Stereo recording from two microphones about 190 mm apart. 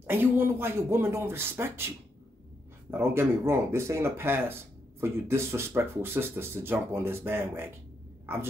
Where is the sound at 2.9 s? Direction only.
15° right (ahead or behind).